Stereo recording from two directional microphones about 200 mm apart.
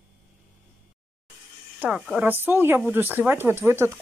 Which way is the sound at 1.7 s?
5° right (ahead or behind).